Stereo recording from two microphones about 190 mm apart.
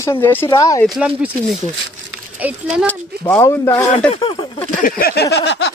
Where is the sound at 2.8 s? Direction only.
10° left (ahead or behind).